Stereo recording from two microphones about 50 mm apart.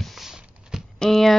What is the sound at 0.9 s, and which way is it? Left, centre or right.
Speech, centre.